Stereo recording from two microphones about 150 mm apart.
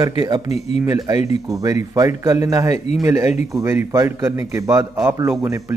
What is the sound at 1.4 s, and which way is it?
A man's voice, 20° right (ahead or behind).